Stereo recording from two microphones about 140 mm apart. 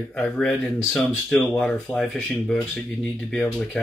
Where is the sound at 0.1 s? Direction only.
5° left (ahead or behind).